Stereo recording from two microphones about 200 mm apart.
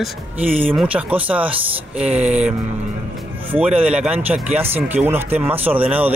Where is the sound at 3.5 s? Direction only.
5° right (ahead or behind).